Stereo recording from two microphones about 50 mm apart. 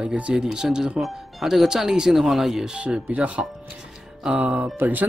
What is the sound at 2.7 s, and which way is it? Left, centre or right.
Speech, centre.